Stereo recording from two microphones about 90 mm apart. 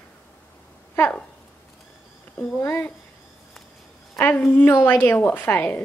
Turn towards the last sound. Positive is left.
turn(degrees=20)  # may be behind; listen again after turning